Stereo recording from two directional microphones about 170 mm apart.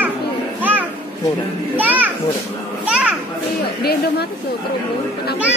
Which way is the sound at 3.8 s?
70° left (ahead or behind).